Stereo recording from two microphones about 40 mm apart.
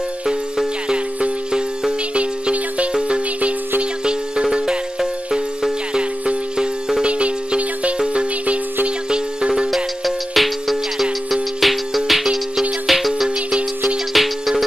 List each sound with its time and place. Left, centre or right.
0.9 s music: right
7.1 s music: right
10.0 s music: centre